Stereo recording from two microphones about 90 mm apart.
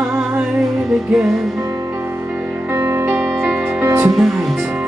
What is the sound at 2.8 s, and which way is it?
Music, 25° right (ahead or behind).